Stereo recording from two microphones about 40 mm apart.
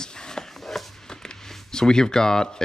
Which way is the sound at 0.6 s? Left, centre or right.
Centre.